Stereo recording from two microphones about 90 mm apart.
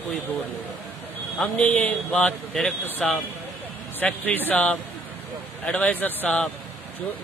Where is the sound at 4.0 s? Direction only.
15° left (ahead or behind).